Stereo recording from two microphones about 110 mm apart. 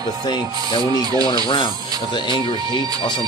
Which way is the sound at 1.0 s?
35° right (ahead or behind).